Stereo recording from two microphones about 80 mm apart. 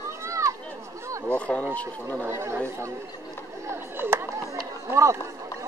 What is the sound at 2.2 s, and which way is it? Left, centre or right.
Speech, right.